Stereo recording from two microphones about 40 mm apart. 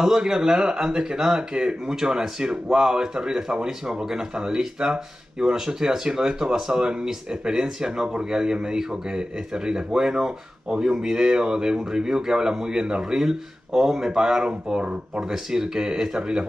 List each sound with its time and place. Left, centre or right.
0.0 s speech: centre